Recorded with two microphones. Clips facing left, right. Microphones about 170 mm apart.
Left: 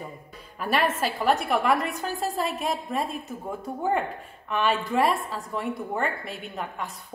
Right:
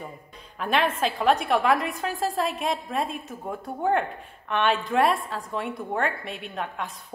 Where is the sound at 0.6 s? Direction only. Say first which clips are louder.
Right 1 dB; 5° left (ahead or behind).